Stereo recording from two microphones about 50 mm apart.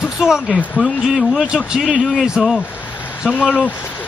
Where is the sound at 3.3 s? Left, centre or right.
Left.